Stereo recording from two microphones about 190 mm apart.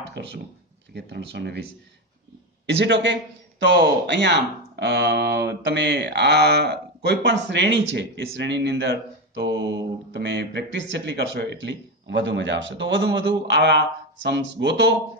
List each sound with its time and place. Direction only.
0.1 s speech: 65° right (ahead or behind)
0.9 s mantra: 65° right (ahead or behind)
2.6 s mantra: 70° right (ahead or behind)